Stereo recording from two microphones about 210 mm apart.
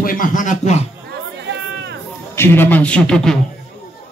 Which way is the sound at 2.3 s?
10° left (ahead or behind).